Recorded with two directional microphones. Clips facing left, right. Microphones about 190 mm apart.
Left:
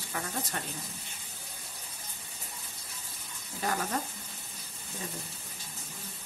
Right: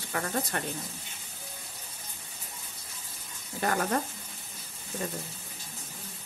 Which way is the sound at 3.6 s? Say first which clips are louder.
Right 4 dB; 60° right (ahead or behind).